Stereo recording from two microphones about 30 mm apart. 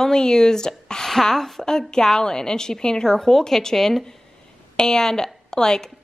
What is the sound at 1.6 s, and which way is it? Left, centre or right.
Speech, left.